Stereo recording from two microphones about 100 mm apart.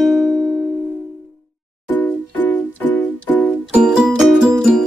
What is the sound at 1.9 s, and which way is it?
Music, 20° left (ahead or behind).